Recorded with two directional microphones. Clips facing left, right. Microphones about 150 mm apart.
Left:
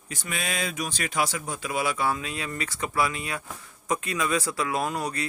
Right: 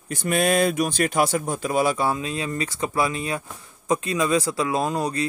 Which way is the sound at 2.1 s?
25° right (ahead or behind).